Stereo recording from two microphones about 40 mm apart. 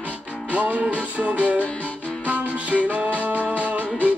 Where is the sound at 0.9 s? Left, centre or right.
Right.